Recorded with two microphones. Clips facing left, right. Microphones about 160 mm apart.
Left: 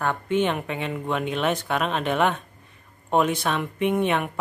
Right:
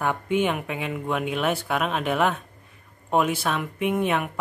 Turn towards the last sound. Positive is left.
turn(degrees=0)  # may be behind; listen again after turning